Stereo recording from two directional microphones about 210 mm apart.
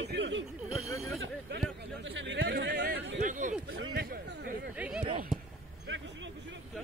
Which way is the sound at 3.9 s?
45° right (ahead or behind).